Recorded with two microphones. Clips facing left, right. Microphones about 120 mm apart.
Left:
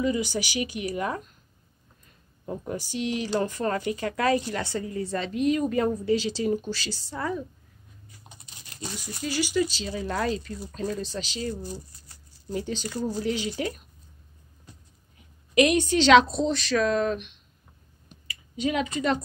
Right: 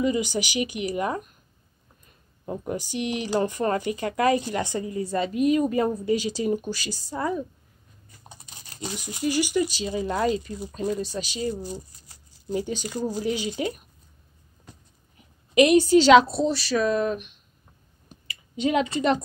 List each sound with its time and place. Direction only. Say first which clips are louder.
0.0 s speech: right 2 dB; 15° right (ahead or behind)
2.4 s speech: right 2 dB; 15° right (ahead or behind)
8.8 s speech: right 6 dB; 15° right (ahead or behind)
15.5 s a woman's voice: right 5 dB; 35° right (ahead or behind)
16.0 s speech: left 1 dB; 5° right (ahead or behind)
18.2 s a sound: right 2 dB; 25° right (ahead or behind)